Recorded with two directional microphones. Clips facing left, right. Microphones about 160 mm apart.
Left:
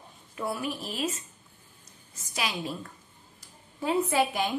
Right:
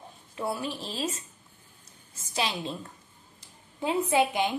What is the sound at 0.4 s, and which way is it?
Speech, 30° right (ahead or behind).